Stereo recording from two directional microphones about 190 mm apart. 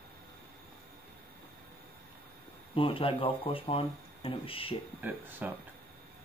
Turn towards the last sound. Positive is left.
turn(degrees=-10)  # may be behind; listen again after turning